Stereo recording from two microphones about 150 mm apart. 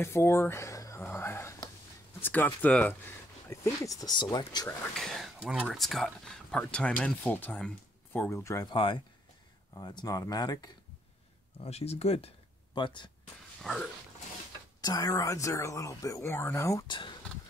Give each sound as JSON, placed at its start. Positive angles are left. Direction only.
{"t": 0.0, "sound": "a sound", "side_deg": 15}
{"t": 2.2, "sound": "speech", "side_deg": 10}
{"t": 3.4, "sound": "speech", "side_deg": 20}
{"t": 4.9, "sound": "speech", "side_deg": 0}
{"t": 8.6, "sound": "speech", "side_deg": 35}
{"t": 11.6, "sound": "speech", "side_deg": 45}
{"t": 12.7, "sound": "speech", "side_deg": 30}
{"t": 13.6, "sound": "a sound", "side_deg": 5}
{"t": 14.8, "sound": "speech", "side_deg": 25}
{"t": 16.8, "sound": "speech", "side_deg": 30}